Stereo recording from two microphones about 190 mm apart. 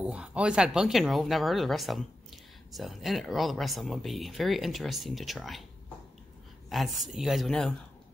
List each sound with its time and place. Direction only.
0.0 s speech: 5° right (ahead or behind)
6.7 s speech: centre (ahead or behind)